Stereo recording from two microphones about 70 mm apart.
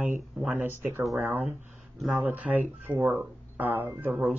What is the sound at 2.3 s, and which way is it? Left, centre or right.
Speech, right.